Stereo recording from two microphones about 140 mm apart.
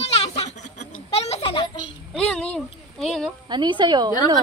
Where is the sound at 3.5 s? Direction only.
35° right (ahead or behind).